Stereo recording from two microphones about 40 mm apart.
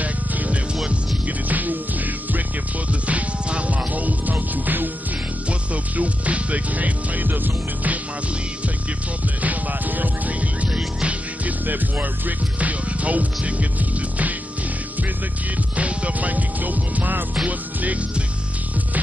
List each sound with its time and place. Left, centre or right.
0.0 s music: right
2.9 s music: right
5.5 s music: right
7.2 s music: right
9.4 s music: right
10.8 s music: right
11.4 s music: right
15.7 s music: right